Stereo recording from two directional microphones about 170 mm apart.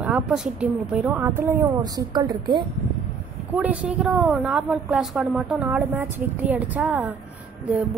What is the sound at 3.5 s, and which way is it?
A woman's voice, 5° right (ahead or behind).